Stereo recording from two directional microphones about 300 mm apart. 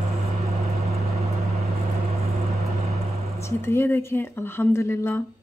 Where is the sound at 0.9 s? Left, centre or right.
Right.